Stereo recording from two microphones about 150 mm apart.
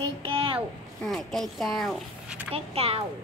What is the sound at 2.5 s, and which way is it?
Speech, 40° right (ahead or behind).